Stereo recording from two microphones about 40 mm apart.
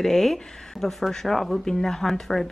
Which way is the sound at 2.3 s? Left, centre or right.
Centre.